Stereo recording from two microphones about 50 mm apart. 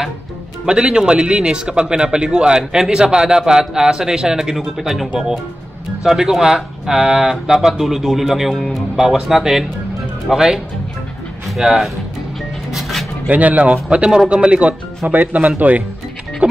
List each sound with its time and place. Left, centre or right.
0.7 s speech: centre
12.7 s a sound: centre
13.3 s speech: right